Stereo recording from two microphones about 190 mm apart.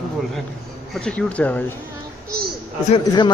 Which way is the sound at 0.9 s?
5° left (ahead or behind).